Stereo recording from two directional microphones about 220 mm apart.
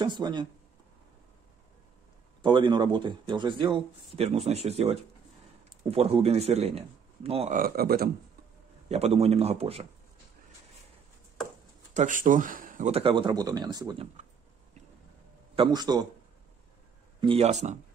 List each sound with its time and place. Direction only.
0.0 s a man's voice: 20° right (ahead or behind)
2.4 s a man's voice: 20° right (ahead or behind)
7.5 s speech: 45° right (ahead or behind)
8.8 s a man's voice: 30° right (ahead or behind)
11.9 s a man's voice: 35° right (ahead or behind); by 14.0 s 20° right (ahead or behind)
15.5 s a man's voice: 20° right (ahead or behind)
17.2 s a man's voice: 25° right (ahead or behind)